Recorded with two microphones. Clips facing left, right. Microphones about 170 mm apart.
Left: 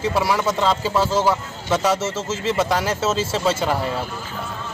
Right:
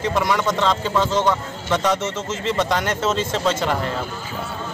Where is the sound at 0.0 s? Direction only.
5° left (ahead or behind).